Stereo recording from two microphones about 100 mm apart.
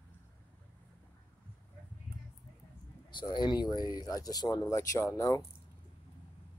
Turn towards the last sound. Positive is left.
turn(degrees=30)  # may be behind; listen again after turning